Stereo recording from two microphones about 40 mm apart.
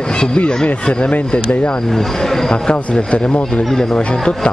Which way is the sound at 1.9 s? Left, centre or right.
Centre.